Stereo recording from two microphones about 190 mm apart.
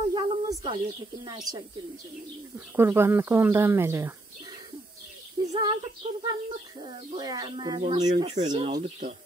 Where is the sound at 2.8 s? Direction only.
15° right (ahead or behind).